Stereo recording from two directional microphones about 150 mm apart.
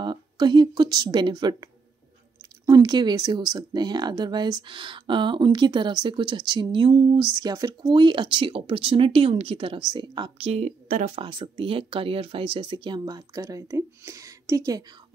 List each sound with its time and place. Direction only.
0.0 s speech: 30° right (ahead or behind)
2.6 s speech: 25° right (ahead or behind); by 11.1 s 50° right (ahead or behind)
11.1 s speech: 35° right (ahead or behind)